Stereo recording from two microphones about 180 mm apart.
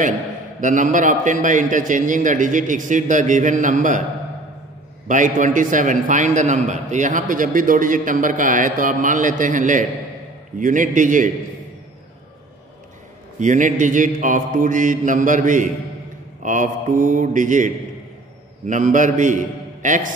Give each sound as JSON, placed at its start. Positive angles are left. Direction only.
{"t": 0.6, "sound": "a man's voice", "side_deg": -45}
{"t": 5.0, "sound": "a man's voice", "side_deg": -45}
{"t": 13.4, "sound": "a man's voice", "side_deg": -45}
{"t": 18.7, "sound": "a man's voice", "side_deg": -45}